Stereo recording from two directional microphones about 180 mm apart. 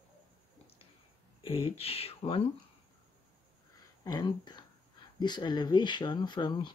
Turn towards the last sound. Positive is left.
turn(degrees=25)  # may be behind; listen again after turning